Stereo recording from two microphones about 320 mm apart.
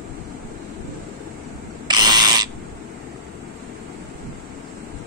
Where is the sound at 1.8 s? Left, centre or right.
Centre.